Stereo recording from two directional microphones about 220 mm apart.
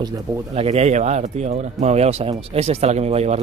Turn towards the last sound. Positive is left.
turn(degrees=-30)  # may be behind; listen again after turning